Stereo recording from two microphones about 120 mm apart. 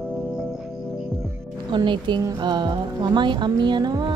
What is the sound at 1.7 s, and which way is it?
Music, 40° right (ahead or behind).